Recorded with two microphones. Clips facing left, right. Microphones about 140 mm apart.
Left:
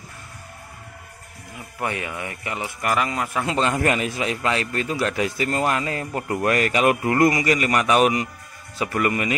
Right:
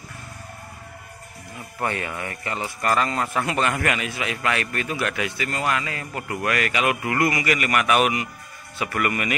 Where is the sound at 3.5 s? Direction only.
25° left (ahead or behind).